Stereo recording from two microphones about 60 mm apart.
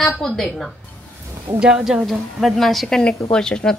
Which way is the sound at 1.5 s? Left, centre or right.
Centre.